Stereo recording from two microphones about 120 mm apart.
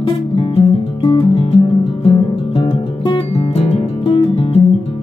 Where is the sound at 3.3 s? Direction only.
55° left (ahead or behind).